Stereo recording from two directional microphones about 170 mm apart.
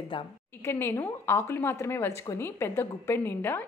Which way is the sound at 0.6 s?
15° left (ahead or behind).